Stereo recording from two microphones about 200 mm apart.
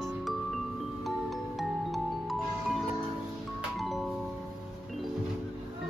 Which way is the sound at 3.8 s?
Centre (ahead or behind).